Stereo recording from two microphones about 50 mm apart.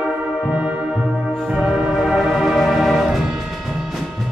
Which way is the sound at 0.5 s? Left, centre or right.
Right.